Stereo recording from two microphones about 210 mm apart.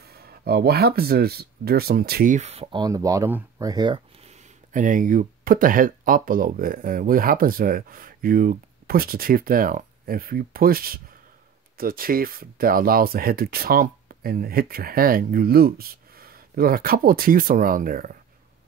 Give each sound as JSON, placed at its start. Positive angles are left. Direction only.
{"t": 0.0, "sound": "speech", "side_deg": -50}